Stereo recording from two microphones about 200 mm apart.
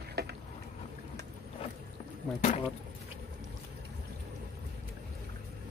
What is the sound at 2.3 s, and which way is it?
Speech, 35° left (ahead or behind).